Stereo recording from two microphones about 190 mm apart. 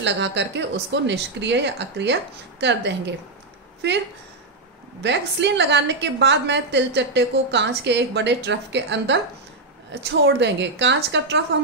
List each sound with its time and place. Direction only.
0.0 s a woman's voice: 70° right (ahead or behind)
3.8 s a woman's voice: 70° right (ahead or behind)
5.0 s a woman's voice: 65° right (ahead or behind)